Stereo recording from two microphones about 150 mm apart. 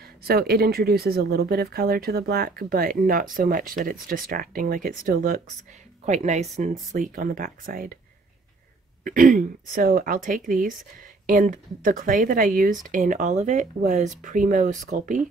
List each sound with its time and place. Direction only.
0.0 s speech: 90° right; by 5.4 s 60° right (ahead or behind)
6.0 s speech: 50° right (ahead or behind)
6.9 s speech: 65° right (ahead or behind)
9.0 s a woman's voice: 60° right (ahead or behind)